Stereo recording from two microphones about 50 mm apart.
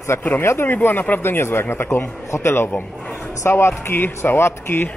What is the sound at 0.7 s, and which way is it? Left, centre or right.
Speech, left.